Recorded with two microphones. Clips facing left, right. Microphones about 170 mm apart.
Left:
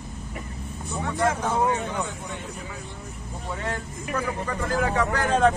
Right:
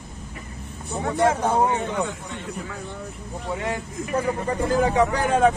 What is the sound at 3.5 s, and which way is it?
Speech, 15° right (ahead or behind).